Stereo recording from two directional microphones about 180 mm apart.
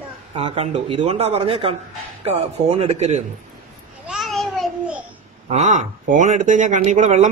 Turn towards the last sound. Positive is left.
turn(degrees=-40)  # may be behind; listen again after turning